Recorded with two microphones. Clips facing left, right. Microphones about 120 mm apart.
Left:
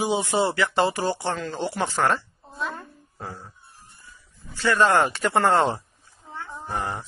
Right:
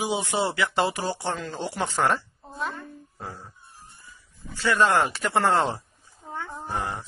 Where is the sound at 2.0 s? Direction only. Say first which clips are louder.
Right 1 dB; 10° right (ahead or behind).